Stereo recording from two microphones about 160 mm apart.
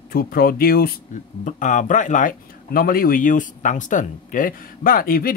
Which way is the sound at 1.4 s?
50° left (ahead or behind).